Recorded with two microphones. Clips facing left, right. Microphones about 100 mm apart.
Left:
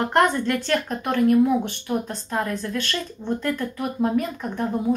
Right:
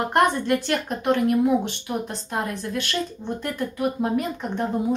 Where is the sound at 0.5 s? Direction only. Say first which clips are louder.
Even; 15° right (ahead or behind).